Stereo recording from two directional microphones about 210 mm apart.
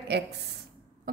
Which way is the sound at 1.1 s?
40° right (ahead or behind).